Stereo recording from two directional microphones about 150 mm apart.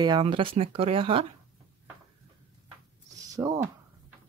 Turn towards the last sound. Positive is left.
turn(degrees=-20)  # may be behind; listen again after turning